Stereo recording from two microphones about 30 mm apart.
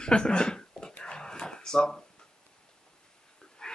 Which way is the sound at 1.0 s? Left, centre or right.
Left.